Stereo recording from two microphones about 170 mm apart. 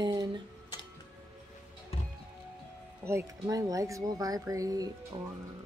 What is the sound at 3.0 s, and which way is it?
Speech, 15° right (ahead or behind).